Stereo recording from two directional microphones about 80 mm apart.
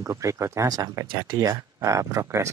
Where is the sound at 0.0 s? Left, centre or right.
Right.